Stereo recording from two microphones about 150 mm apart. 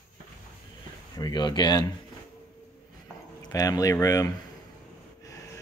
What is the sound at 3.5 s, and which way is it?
Speech, 25° left (ahead or behind).